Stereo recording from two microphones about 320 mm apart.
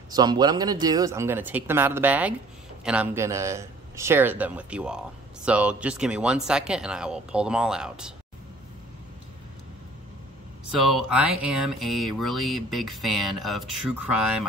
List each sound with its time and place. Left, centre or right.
0.1 s a man's voice: centre
10.7 s a man's voice: centre